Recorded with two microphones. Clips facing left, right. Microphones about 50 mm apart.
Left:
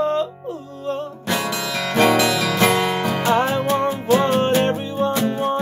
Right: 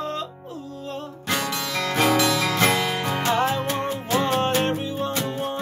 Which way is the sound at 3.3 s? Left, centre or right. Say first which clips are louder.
Left 5 dB; centre.